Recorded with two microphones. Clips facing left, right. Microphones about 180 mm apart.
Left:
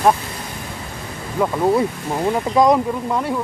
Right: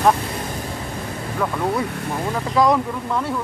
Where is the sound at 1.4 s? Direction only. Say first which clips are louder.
Left 6 dB; 20° left (ahead or behind).